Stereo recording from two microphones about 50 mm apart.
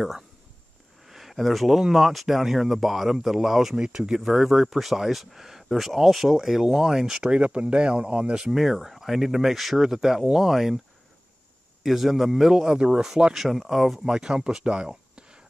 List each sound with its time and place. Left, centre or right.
1.0 s speech: centre
3.7 s speech: centre
8.5 s speech: centre
11.8 s speech: centre
14.0 s speech: centre